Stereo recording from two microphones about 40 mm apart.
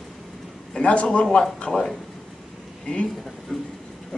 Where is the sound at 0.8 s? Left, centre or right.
Left.